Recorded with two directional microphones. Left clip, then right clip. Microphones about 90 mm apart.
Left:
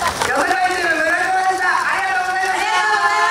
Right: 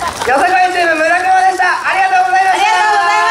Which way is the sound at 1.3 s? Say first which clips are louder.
Right 6 dB; 35° right (ahead or behind).